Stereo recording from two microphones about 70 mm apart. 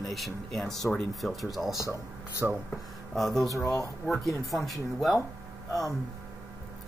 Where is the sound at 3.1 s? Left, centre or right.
Centre.